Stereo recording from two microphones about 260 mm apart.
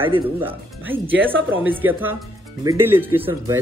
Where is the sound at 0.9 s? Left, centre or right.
Centre.